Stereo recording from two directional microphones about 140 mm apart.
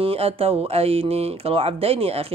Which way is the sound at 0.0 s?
45° right (ahead or behind).